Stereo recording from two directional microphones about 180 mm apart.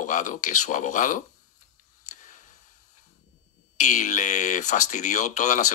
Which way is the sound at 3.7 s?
45° left (ahead or behind).